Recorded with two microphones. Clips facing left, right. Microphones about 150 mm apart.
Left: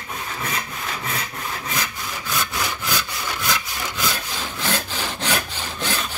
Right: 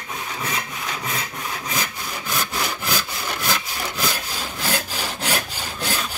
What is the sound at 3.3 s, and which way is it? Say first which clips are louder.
Wood: right 1 dB; 35° right (ahead or behind).